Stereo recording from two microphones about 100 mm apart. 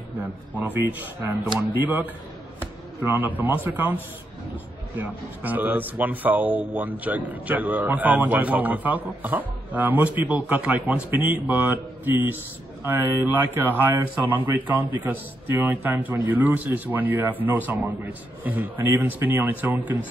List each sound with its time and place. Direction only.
0.2 s a man's voice: 20° right (ahead or behind)